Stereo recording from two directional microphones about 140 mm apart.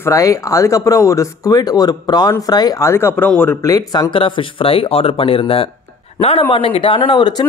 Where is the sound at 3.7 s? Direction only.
30° left (ahead or behind).